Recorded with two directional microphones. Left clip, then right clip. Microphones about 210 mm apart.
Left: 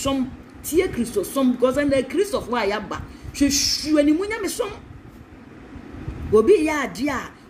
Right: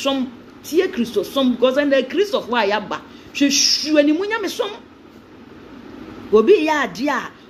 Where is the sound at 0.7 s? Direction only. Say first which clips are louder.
Right 3 dB; 20° left (ahead or behind).